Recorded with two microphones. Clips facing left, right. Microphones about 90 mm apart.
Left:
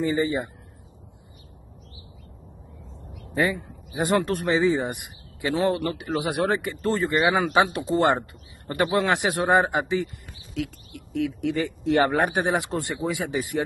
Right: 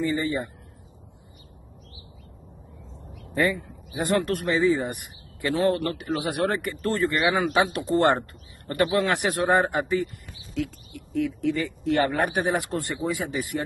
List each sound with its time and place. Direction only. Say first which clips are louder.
0.1 s speech: left 2 dB; 20° left (ahead or behind)
3.3 s a man's voice: even; 20° left (ahead or behind)
10.6 s speech: right 1 dB; 80° left
11.5 s speech: left 2 dB; 20° left (ahead or behind)